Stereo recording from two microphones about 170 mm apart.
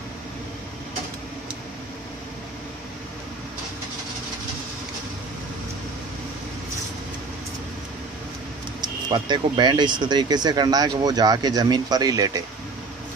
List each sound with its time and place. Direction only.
8.8 s speech: 25° right (ahead or behind)